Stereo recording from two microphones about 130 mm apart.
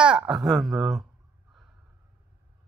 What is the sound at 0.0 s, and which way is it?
Speech, 5° right (ahead or behind).